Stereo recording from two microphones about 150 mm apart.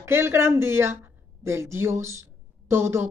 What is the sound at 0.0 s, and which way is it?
Speech, 15° right (ahead or behind).